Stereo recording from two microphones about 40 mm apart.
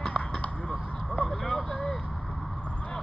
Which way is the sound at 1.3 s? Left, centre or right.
Centre.